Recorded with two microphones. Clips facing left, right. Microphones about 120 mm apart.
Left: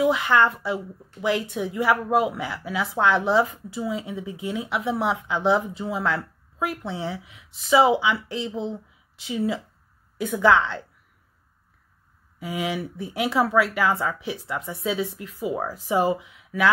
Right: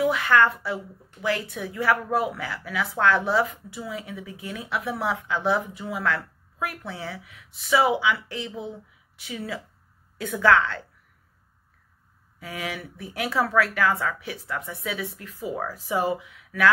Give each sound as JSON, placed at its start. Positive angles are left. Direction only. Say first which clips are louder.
{"t": 0.0, "sound": "a child's voice", "louder": "left 1 dB", "side_deg": 20}
{"t": 12.4, "sound": "a woman's voice", "louder": "left 6 dB", "side_deg": 20}